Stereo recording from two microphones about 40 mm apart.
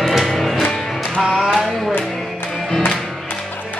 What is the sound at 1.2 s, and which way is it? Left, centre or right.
Music, centre.